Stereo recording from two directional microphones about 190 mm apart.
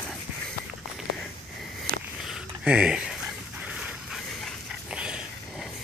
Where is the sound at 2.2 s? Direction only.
5° right (ahead or behind).